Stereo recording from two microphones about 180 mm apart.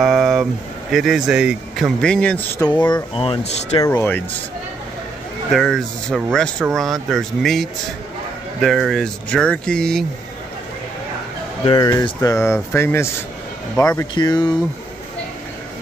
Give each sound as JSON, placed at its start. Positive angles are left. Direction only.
{"t": 0.0, "sound": "a sound", "side_deg": 0}
{"t": 0.9, "sound": "a man's voice", "side_deg": 0}
{"t": 2.9, "sound": "speech", "side_deg": 30}
{"t": 3.8, "sound": "speech", "side_deg": 10}
{"t": 5.5, "sound": "a man's voice", "side_deg": 0}
{"t": 11.6, "sound": "speech", "side_deg": 25}